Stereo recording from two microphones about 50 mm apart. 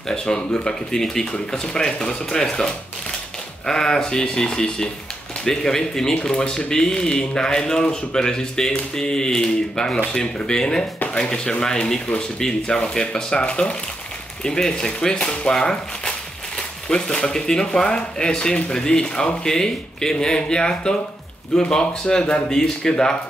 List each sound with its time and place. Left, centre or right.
0.1 s speech: centre